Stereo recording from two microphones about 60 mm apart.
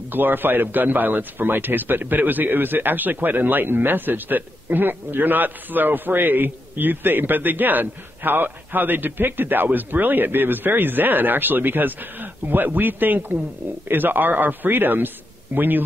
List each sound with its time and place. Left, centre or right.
0.1 s a man's voice: right